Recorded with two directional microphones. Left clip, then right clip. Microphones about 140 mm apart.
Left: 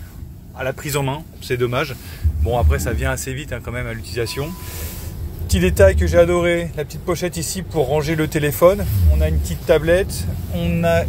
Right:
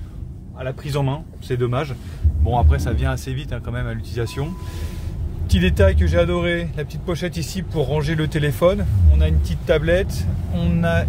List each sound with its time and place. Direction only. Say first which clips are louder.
0.6 s a man's voice: left 5 dB; 15° left (ahead or behind)
0.9 s speech: left 2 dB; 5° right (ahead or behind)
5.5 s speech: left 5 dB; 10° right (ahead or behind)
10.5 s speech: left 4 dB; 30° right (ahead or behind)